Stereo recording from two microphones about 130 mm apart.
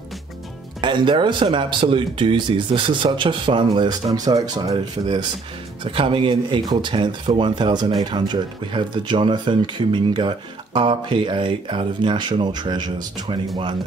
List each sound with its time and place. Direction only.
0.7 s speech: 40° right (ahead or behind)
6.6 s speech: 30° right (ahead or behind)
6.9 s speech: 40° right (ahead or behind)